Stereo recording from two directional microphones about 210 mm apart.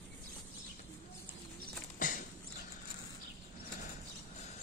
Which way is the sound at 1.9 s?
40° left (ahead or behind).